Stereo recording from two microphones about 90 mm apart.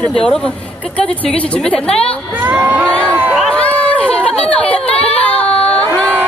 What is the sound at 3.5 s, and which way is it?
Chatter, 15° left (ahead or behind).